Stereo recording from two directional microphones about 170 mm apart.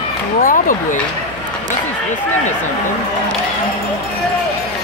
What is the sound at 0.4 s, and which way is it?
Speech, 55° left (ahead or behind).